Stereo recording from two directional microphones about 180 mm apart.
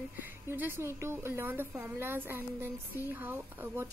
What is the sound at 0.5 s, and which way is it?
A woman's voice, 10° right (ahead or behind).